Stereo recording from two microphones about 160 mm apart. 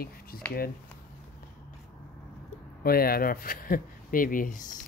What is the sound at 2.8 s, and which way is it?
Speech, 70° left (ahead or behind).